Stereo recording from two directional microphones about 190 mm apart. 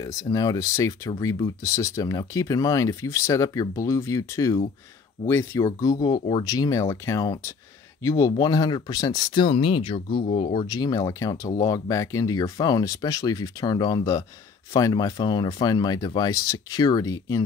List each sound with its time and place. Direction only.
0.0 s speech: 20° left (ahead or behind)